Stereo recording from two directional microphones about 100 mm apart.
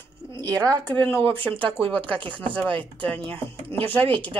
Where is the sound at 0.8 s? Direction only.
20° left (ahead or behind).